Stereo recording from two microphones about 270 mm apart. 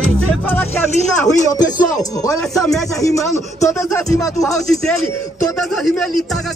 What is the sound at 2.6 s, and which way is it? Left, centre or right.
Speech, centre.